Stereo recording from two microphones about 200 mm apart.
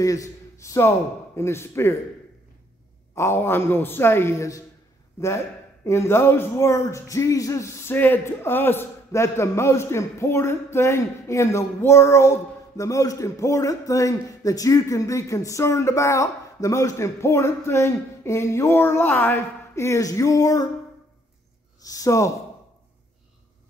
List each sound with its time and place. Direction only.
0.0 s speech: 15° left (ahead or behind)
3.2 s speech: 10° left (ahead or behind)
5.9 s speech: 15° left (ahead or behind)
21.8 s speech: 15° left (ahead or behind)